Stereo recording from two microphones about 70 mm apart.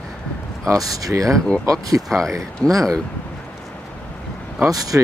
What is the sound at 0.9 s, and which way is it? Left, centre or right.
Speech, right.